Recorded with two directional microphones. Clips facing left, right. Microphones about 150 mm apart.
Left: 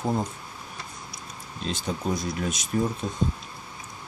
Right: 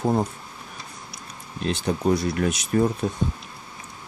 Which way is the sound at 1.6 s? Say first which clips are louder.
Right 6 dB; 65° right (ahead or behind).